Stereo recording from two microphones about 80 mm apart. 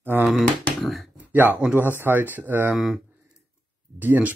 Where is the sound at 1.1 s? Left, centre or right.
Right.